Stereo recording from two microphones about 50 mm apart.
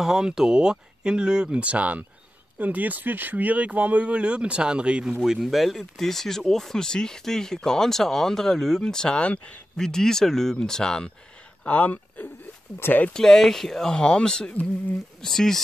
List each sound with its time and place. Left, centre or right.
0.0 s speech: centre
5.2 s speech: centre
9.2 s speech: left
9.8 s speech: centre
11.6 s speech: left
13.1 s speech: centre